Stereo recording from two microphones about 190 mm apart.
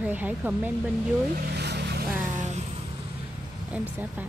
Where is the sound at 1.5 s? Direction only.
60° right (ahead or behind).